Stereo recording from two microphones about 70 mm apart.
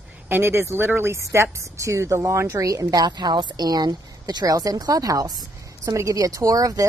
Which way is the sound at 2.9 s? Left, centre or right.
Right.